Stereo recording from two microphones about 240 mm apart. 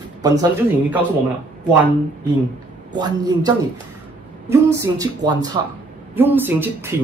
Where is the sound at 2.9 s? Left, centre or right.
Centre.